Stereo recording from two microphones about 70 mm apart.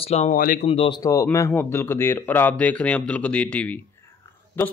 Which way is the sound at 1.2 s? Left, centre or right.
Left.